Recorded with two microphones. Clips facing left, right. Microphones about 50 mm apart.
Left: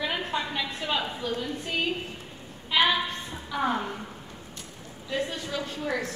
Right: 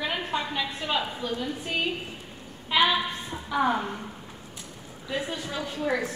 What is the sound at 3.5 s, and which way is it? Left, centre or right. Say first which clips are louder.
Speech: right 3 dB; centre.